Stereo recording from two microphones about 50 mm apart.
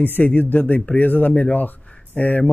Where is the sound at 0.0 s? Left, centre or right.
Left.